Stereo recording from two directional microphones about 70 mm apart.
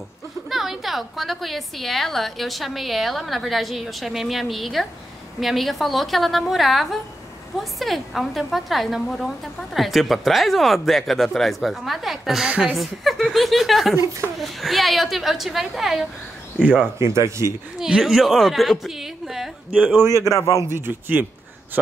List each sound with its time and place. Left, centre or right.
0.5 s a woman's voice: centre
12.7 s a woman's voice: centre
17.0 s speech: right
17.7 s a woman's voice: centre
20.1 s speech: right
20.3 s a man's voice: left
20.6 s a man's voice: right